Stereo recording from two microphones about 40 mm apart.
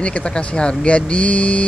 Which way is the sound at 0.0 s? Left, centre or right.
Left.